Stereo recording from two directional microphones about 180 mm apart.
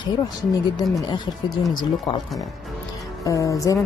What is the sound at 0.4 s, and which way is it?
Speech, 20° left (ahead or behind).